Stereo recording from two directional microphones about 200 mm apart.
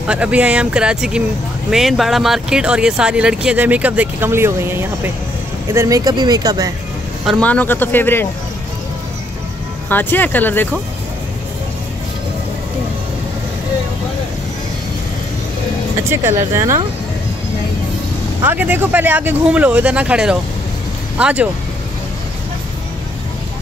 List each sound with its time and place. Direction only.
0.0 s speech: 5° right (ahead or behind)
7.2 s a man's voice: 5° left (ahead or behind)
9.8 s a man's voice: 10° left (ahead or behind)
16.1 s speech: 15° right (ahead or behind)
18.4 s speech: 10° right (ahead or behind)